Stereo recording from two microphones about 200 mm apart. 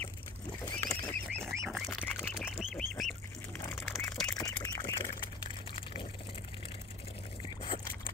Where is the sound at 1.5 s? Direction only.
Centre (ahead or behind).